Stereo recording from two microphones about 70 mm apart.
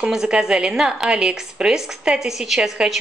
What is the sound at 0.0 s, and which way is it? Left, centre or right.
A woman's voice, centre.